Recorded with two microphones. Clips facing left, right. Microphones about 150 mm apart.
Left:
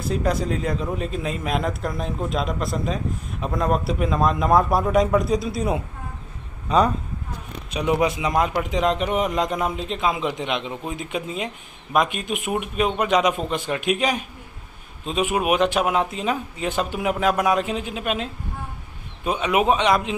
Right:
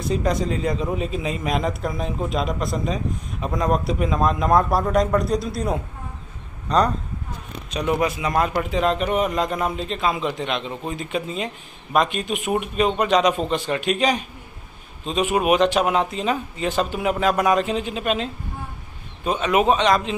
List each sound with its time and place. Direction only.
0.0 s a man's voice: centre (ahead or behind)
8.6 s speech: 15° left (ahead or behind)